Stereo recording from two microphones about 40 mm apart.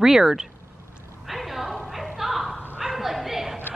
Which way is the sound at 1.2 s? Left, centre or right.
Centre.